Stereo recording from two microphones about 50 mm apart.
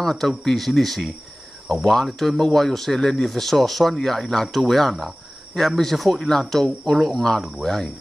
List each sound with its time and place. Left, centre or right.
0.0 s speech: centre